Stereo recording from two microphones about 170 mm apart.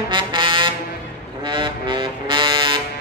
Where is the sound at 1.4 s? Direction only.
30° right (ahead or behind).